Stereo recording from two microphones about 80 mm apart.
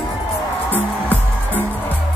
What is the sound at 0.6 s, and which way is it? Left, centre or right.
Music, left.